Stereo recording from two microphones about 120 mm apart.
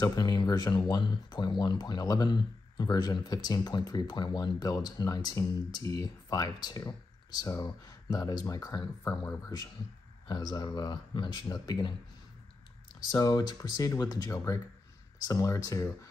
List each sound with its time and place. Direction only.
0.0 s speech: 35° left (ahead or behind)
10.2 s speech: 35° left (ahead or behind)
13.0 s speech: 35° left (ahead or behind)